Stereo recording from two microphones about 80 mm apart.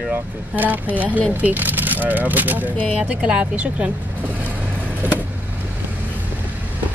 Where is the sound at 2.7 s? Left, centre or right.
Centre.